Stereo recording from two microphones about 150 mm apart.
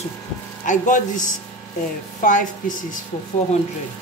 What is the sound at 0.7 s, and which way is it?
Speech, 55° left (ahead or behind).